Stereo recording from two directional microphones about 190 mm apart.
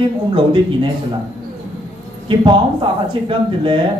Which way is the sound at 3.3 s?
25° right (ahead or behind).